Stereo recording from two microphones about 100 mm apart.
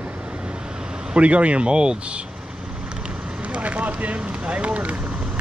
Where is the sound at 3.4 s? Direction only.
15° right (ahead or behind).